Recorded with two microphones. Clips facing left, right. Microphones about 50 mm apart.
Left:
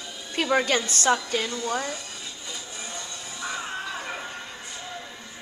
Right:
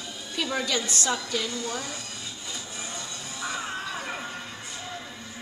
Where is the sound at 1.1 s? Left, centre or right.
Left.